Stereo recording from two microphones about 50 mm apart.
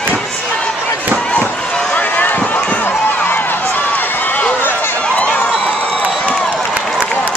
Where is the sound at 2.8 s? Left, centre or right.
Left.